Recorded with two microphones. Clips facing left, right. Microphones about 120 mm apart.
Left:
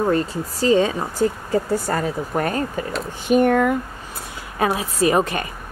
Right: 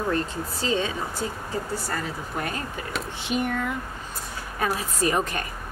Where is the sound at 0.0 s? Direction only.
40° left (ahead or behind).